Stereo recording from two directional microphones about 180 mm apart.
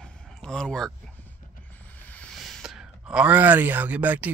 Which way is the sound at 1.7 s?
10° left (ahead or behind).